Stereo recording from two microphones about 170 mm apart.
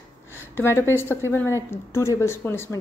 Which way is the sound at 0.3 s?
15° left (ahead or behind).